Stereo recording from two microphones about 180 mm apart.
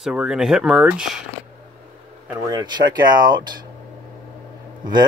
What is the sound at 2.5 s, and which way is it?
Speech, 20° right (ahead or behind).